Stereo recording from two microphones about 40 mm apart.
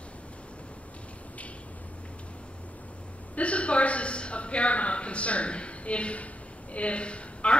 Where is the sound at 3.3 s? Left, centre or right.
Left.